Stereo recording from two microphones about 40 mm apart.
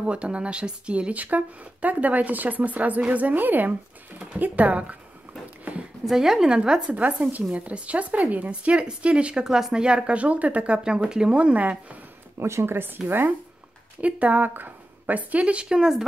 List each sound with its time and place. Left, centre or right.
0.0 s speech: right
1.1 s a woman's voice: right
6.0 s speech: centre
6.9 s speech: right; by 11.3 s centre
11.3 s speech: right
12.4 s speech: right
14.0 s speech: right
14.4 s speech: right
15.7 s speech: centre